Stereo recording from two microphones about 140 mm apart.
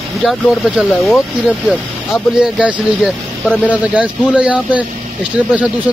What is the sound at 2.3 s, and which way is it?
Speech, 5° right (ahead or behind).